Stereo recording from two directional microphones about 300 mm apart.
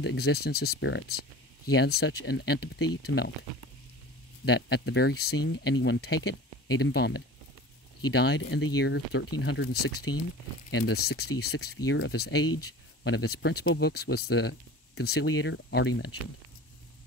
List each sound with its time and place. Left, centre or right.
0.0 s speech: left
4.5 s speech: left
11.2 s speech: left
11.5 s speech: left
12.4 s speech: left
13.0 s speech: left